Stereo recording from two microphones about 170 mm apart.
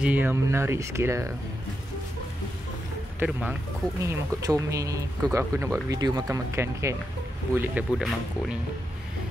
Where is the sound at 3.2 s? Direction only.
10° right (ahead or behind).